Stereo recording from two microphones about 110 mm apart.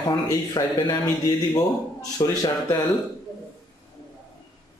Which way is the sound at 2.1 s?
35° left (ahead or behind).